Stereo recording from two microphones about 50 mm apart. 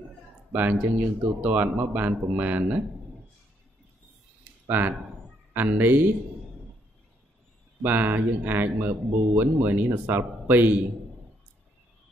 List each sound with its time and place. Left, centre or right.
0.5 s speech: right
4.6 s speech: right
7.8 s speech: right